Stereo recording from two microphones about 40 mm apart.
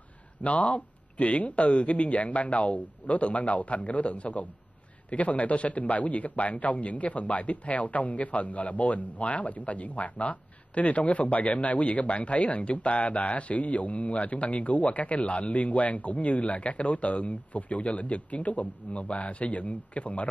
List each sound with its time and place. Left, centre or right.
0.4 s a man's voice: left